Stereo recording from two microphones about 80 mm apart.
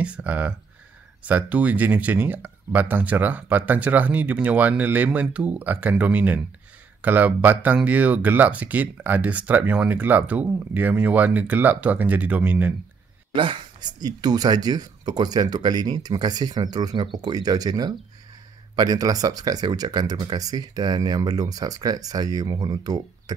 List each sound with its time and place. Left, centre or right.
0.0 s speech: centre
13.3 s speech: right